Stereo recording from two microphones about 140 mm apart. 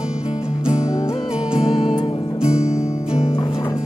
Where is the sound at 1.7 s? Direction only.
50° left (ahead or behind).